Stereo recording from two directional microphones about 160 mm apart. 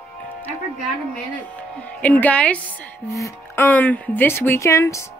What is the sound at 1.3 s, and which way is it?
A woman's voice, 10° left (ahead or behind).